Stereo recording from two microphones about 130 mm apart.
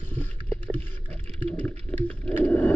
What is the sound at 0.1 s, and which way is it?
Boat, 15° left (ahead or behind).